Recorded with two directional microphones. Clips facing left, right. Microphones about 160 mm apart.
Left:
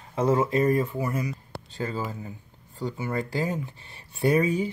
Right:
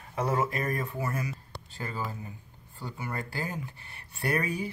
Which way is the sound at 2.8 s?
25° left (ahead or behind).